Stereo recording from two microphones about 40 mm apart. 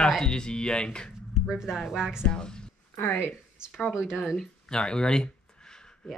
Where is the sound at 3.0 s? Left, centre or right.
Left.